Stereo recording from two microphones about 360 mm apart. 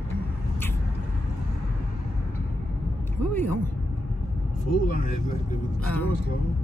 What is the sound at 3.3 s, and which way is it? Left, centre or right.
Speech, centre.